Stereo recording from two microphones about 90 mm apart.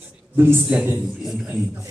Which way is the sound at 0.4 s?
25° right (ahead or behind).